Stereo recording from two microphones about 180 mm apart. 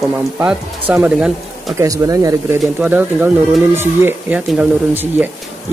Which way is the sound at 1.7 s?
20° right (ahead or behind).